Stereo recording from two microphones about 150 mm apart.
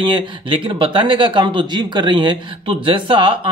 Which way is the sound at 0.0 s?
35° right (ahead or behind).